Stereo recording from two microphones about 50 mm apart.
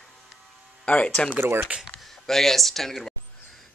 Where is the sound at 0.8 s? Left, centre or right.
Left.